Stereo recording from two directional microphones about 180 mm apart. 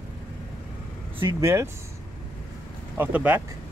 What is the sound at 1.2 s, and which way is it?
Speech, 20° right (ahead or behind).